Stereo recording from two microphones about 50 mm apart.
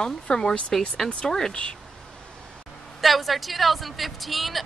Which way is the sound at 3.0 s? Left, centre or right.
Centre.